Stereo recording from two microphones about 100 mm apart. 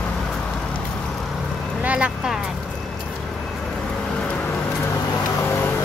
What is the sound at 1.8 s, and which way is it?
Vehicle, 10° right (ahead or behind).